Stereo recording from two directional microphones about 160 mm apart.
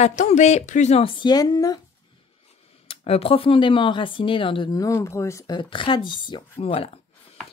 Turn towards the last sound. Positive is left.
turn(degrees=35)  # may be behind; listen again after turning